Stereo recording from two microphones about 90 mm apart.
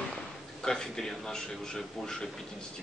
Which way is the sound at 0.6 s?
5° left (ahead or behind).